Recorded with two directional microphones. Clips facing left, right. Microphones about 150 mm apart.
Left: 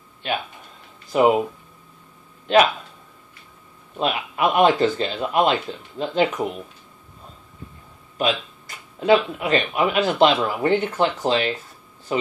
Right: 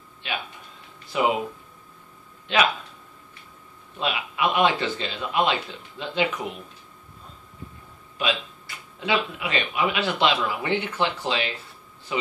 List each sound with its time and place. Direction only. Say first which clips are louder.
1.1 s speech: left 6 dB; 45° left (ahead or behind)
2.5 s speech: left 7 dB; 45° left (ahead or behind)
4.0 s speech: left 4 dB; 45° left (ahead or behind)
8.2 s speech: left 4 dB; 45° left (ahead or behind)